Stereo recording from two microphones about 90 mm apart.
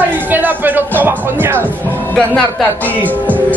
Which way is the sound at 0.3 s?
20° right (ahead or behind).